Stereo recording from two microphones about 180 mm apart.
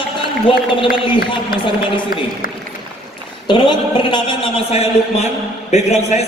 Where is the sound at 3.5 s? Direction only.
25° left (ahead or behind).